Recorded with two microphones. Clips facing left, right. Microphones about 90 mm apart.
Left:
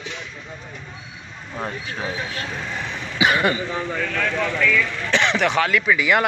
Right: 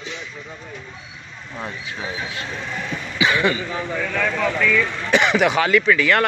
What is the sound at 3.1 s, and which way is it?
Speech, 25° left (ahead or behind).